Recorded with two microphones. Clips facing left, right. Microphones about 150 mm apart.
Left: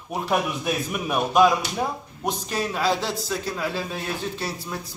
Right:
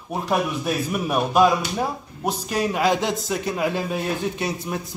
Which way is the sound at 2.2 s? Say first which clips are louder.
Right 3 dB; 10° right (ahead or behind).